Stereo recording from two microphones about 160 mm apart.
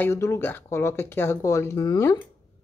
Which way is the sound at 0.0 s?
15° left (ahead or behind).